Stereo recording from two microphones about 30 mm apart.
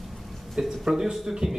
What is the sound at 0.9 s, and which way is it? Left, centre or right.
Speech, centre.